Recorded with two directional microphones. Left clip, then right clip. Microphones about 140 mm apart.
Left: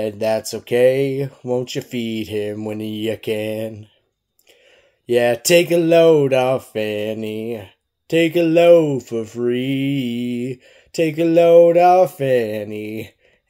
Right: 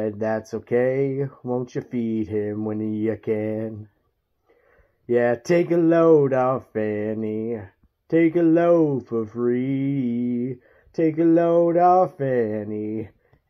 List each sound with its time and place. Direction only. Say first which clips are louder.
0.0 s speech: left 5 dB; 45° left (ahead or behind)
1.4 s speech: left 8 dB; 25° left (ahead or behind)
1.9 s mantra: left 2 dB; 15° right (ahead or behind)
2.1 s speech: left 1 dB; 45° left (ahead or behind)
5.1 s speech: left 5 dB; 45° left (ahead or behind)
8.4 s speech: left 8 dB; 35° left (ahead or behind)
9.6 s mantra: left 4 dB; 15° right (ahead or behind)
10.2 s speech: left 2 dB; 55° left (ahead or behind)
11.8 s speech: left 4 dB; 25° left (ahead or behind)
12.2 s speech: left 5 dB; 45° left (ahead or behind)